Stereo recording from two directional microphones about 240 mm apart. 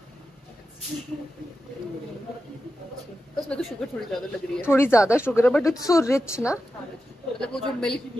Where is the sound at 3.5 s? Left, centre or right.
Centre.